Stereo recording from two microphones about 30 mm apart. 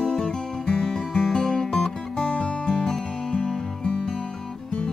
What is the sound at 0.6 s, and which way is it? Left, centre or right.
Music, left.